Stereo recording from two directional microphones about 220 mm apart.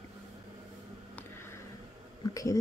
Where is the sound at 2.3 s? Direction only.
15° left (ahead or behind).